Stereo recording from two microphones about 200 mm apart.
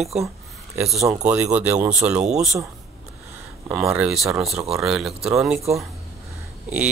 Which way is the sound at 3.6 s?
5° right (ahead or behind).